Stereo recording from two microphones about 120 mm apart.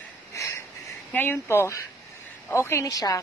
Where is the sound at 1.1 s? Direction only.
15° left (ahead or behind).